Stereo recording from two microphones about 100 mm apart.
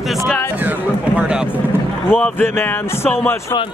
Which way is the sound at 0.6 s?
15° right (ahead or behind).